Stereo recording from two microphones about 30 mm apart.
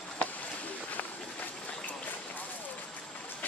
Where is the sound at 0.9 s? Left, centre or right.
Left.